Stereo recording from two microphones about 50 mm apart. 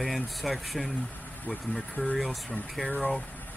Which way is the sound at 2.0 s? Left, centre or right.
Left.